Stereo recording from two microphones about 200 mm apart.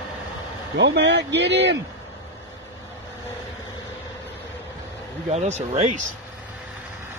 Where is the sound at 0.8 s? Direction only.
60° right (ahead or behind).